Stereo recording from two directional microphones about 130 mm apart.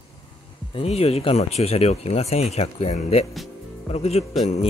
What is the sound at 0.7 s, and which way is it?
Speech, 50° left (ahead or behind).